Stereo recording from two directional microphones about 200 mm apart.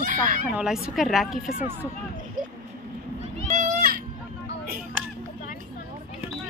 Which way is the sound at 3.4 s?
40° right (ahead or behind).